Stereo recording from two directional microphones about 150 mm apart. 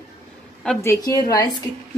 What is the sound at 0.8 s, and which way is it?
Speech, 20° left (ahead or behind).